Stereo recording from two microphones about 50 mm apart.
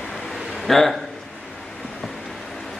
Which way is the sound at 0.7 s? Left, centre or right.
Centre.